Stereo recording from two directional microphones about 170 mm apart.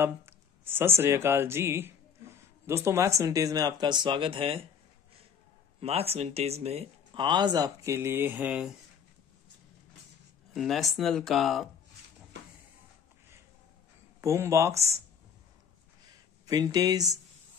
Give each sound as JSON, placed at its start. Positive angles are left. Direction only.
{"t": 0.0, "sound": "speech", "side_deg": -10}
{"t": 5.8, "sound": "speech", "side_deg": -35}
{"t": 10.5, "sound": "speech", "side_deg": 0}
{"t": 14.2, "sound": "speech", "side_deg": -15}
{"t": 16.4, "sound": "speech", "side_deg": -20}